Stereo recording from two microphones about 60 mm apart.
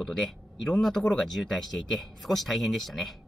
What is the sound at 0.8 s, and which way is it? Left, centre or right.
Speech, centre.